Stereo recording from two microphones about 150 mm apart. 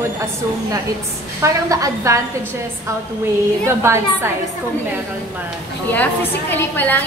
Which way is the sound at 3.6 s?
20° right (ahead or behind).